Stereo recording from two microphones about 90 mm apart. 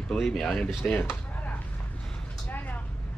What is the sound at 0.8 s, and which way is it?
Speech, 25° left (ahead or behind).